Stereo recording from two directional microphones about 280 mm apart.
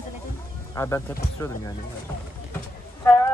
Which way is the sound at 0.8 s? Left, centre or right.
Centre.